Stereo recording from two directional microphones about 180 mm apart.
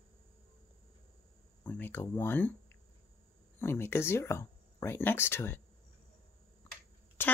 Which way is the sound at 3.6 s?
15° left (ahead or behind).